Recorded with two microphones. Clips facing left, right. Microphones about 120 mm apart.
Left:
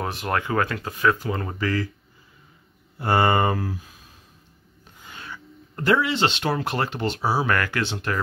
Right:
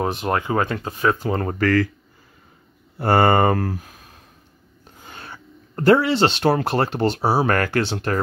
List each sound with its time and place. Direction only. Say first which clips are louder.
0.0 s speech: right 4 dB; 25° right (ahead or behind)
1.3 s speech: right 7 dB; 45° right (ahead or behind)
3.0 s speech: right 4 dB; 45° right (ahead or behind)
5.0 s a sound: right 1 dB; 40° right (ahead or behind)
6.6 s speech: right 5 dB; 35° right (ahead or behind)